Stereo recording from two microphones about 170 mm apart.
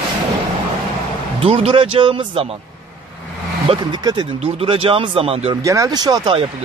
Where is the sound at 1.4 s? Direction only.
35° right (ahead or behind).